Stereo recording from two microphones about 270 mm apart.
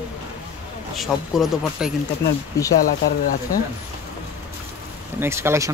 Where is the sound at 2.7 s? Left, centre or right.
Left.